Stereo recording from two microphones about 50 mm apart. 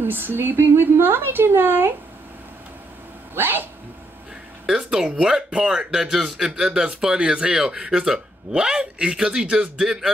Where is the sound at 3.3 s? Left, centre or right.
Right.